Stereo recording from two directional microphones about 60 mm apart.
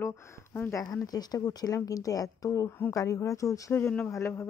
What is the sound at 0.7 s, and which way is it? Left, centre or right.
Speech, left.